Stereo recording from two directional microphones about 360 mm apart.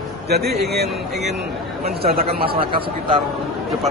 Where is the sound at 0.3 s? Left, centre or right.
Right.